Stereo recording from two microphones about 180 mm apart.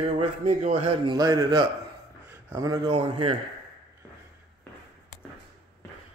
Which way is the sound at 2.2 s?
15° right (ahead or behind).